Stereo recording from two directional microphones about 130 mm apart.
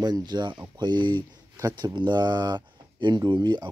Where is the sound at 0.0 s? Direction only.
35° right (ahead or behind).